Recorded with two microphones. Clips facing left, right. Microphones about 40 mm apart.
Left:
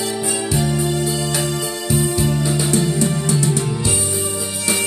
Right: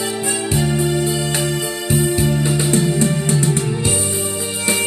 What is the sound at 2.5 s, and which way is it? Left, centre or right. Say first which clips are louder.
Music: right 1 dB; right.